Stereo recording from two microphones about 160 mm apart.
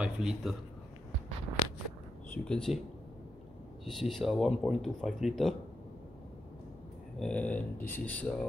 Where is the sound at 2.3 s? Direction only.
5° left (ahead or behind).